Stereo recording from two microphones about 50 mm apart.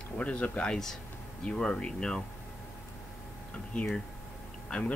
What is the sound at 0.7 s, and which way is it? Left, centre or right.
Speech, centre.